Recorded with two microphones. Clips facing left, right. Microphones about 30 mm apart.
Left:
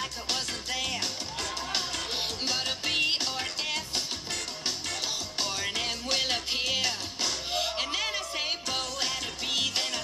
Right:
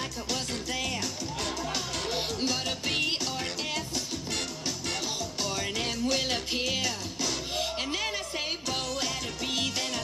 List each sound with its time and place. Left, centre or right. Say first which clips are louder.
1.7 s music: even; left
3.9 s music: even; left
5.6 s music: even; centre
6.0 s music: right 1 dB; left
6.3 s music: even; centre
6.8 s music: left 1 dB; left
7.5 s music: left 1 dB; centre